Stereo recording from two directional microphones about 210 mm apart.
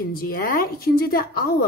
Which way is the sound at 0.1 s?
45° left (ahead or behind).